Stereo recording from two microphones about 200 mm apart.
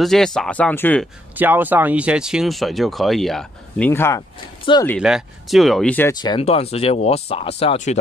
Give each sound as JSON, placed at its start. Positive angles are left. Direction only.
{"t": 0.0, "sound": "speech", "side_deg": 0}
{"t": 1.3, "sound": "speech", "side_deg": -10}
{"t": 5.0, "sound": "speech", "side_deg": 0}
{"t": 6.1, "sound": "speech", "side_deg": 20}